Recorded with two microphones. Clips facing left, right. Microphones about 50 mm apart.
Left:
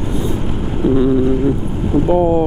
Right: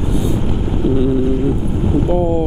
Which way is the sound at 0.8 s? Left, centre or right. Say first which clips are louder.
Left 3 dB; left.